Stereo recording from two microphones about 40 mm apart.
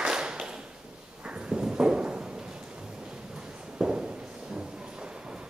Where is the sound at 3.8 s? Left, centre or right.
Centre.